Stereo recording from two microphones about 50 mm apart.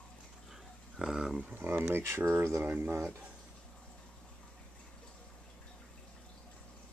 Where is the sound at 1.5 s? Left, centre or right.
Right.